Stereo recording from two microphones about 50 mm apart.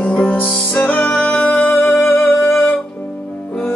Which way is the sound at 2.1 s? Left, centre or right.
Left.